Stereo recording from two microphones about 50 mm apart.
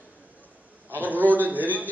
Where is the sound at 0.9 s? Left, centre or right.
Right.